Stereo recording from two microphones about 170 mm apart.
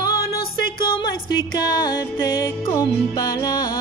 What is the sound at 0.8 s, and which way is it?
Music, 25° left (ahead or behind).